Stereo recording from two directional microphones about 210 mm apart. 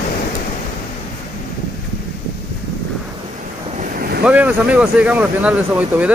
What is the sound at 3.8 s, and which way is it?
Boat, 45° right (ahead or behind).